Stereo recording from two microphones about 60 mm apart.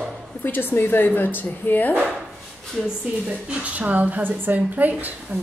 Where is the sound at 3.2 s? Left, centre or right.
Right.